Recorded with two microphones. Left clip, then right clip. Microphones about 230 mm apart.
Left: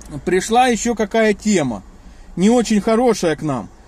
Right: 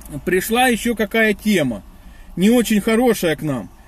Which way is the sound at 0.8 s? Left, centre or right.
Left.